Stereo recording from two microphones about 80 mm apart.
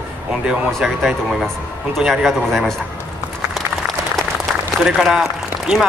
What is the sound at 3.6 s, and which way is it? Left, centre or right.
Applause, centre.